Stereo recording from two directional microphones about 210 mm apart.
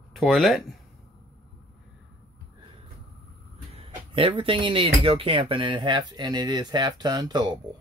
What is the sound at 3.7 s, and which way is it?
Speech, 25° right (ahead or behind).